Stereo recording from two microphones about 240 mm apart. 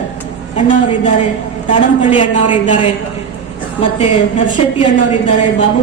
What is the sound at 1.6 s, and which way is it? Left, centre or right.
A woman's voice, left.